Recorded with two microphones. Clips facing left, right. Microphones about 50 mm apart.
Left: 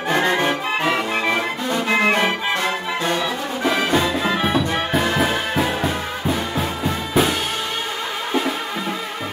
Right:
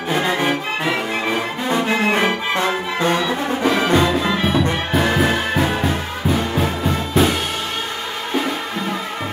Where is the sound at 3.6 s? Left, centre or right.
Centre.